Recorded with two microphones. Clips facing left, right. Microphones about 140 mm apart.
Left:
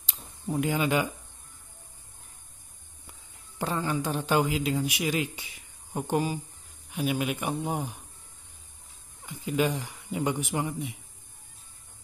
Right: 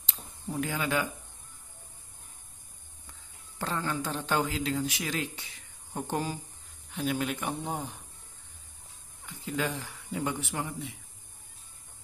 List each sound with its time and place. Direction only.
0.1 s speech: 15° left (ahead or behind)
3.1 s speech: 15° left (ahead or behind)
9.2 s speech: 15° left (ahead or behind)